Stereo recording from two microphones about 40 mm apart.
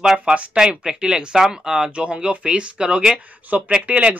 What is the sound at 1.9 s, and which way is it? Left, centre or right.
Speech, right.